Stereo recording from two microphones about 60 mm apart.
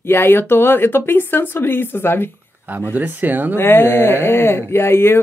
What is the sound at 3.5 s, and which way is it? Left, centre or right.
Speech, left.